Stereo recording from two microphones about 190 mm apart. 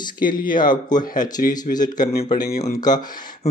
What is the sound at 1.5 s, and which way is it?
Speech, 20° left (ahead or behind).